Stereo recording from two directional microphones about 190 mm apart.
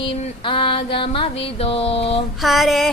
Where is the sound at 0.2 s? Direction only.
25° left (ahead or behind).